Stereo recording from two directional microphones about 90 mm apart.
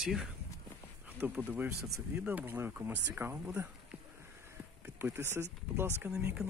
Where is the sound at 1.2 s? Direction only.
20° right (ahead or behind).